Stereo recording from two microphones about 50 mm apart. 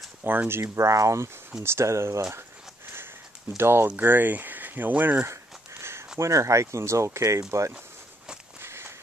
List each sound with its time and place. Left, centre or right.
0.2 s speech: right
0.5 s speech: right
1.6 s speech: right
2.9 s a sound: right
3.9 s speech: right
5.2 s a sound: right
6.1 s speech: right
8.5 s walk: right